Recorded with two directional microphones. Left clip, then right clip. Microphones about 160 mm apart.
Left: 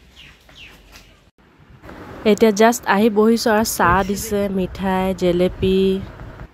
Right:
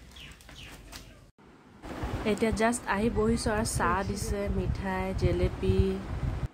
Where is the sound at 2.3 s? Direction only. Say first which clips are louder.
Left 14 dB; 70° left (ahead or behind).